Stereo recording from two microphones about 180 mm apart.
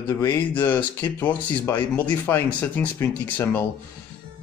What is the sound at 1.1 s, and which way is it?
A man's voice, 10° left (ahead or behind).